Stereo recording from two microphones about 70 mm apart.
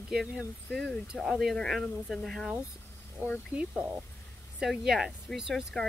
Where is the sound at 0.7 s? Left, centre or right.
Centre.